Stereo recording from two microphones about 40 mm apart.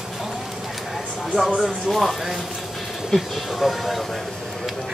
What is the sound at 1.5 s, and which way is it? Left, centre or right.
Speech, centre.